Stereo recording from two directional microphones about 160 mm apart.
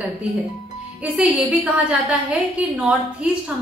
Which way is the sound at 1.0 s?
10° right (ahead or behind).